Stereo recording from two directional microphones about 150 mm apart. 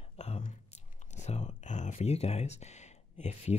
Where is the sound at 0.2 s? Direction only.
45° left (ahead or behind).